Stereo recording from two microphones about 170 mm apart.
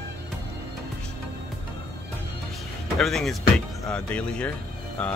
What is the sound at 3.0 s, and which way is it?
Speech, centre (ahead or behind).